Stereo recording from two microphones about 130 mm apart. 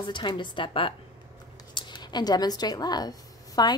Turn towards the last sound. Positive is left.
turn(degrees=30)  # may be behind; listen again after turning